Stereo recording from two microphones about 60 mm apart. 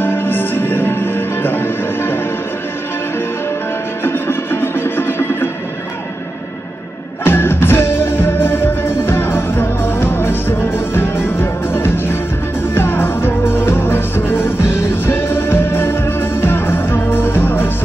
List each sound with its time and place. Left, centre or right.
0.0 s music: left
4.0 s music: left
7.2 s music: left